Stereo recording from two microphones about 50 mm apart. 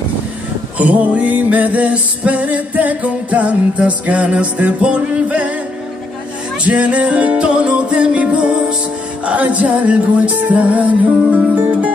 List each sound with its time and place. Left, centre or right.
0.7 s music: right
6.6 s music: right